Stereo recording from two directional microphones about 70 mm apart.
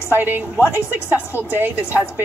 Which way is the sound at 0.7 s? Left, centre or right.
Left.